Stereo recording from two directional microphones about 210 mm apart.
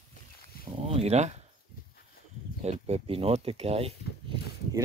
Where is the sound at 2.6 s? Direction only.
30° right (ahead or behind).